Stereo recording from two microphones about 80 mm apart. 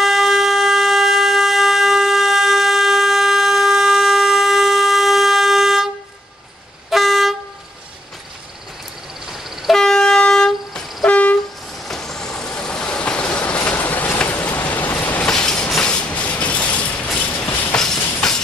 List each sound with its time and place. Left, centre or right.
0.0 s a sound: centre
6.9 s vehicle: centre
9.6 s train: centre
11.9 s vehicle: centre; by 15.2 s left
15.2 s train: centre